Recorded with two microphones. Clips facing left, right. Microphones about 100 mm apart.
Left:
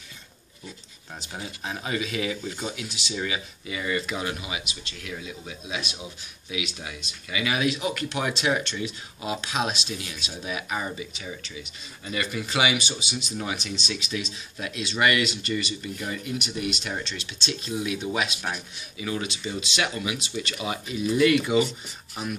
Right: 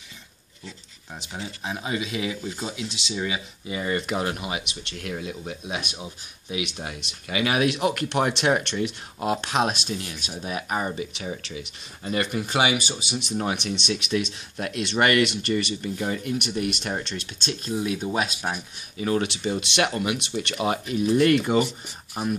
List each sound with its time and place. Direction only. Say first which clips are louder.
1.3 s speech: right 2 dB; 20° right (ahead or behind)
2.8 s speech: right 2 dB; 30° right (ahead or behind)
3.2 s speech: right 1 dB; 15° right (ahead or behind)
3.6 s speech: right 3 dB; 35° right (ahead or behind)
3.9 s speech: right 3 dB; 55° right (ahead or behind)
16.0 s speech: right 5 dB; 40° right (ahead or behind)
16.3 s speech: right 3 dB; 55° right (ahead or behind)
19.2 s speech: right 5 dB; 70° right (ahead or behind)
19.7 s speech: right 3 dB; 55° right (ahead or behind)